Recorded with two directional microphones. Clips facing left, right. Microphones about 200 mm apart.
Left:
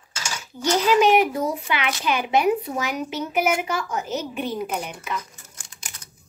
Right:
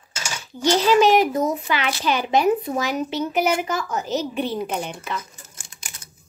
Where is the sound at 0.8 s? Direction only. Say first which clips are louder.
Right 1 dB; 10° left (ahead or behind).